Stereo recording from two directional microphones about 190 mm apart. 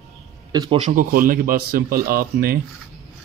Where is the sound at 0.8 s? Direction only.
45° right (ahead or behind).